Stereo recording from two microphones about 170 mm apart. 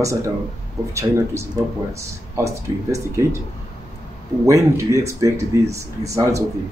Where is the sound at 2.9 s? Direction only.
20° right (ahead or behind).